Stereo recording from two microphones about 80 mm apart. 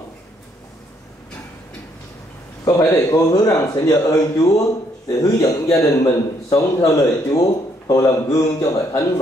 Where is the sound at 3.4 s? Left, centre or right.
Left.